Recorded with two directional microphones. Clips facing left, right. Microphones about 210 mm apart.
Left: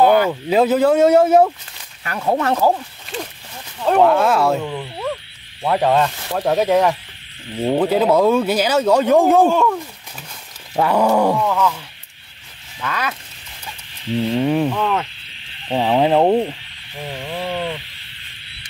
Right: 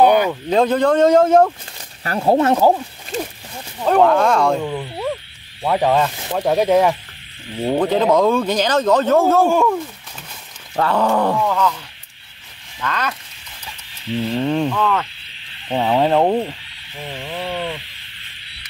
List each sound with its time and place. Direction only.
0.0 s a sound: 20° right (ahead or behind)
0.3 s a man's voice: 5° left (ahead or behind)
2.0 s speech: 30° right (ahead or behind)
3.1 s speech: 40° right (ahead or behind)
3.8 s a man's voice: 5° left (ahead or behind)
9.5 s speech: 10° right (ahead or behind)
10.8 s a man's voice: 15° left (ahead or behind)
12.8 s speech: 5° left (ahead or behind)
14.3 s a man's voice: 10° left (ahead or behind)
15.7 s a man's voice: 5° left (ahead or behind)
17.1 s a sound: 5° left (ahead or behind)